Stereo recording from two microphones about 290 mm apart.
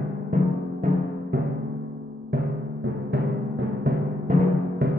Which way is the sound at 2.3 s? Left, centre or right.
Right.